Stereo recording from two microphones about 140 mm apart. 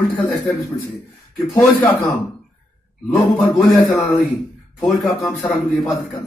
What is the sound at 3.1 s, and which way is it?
Speech, 5° left (ahead or behind).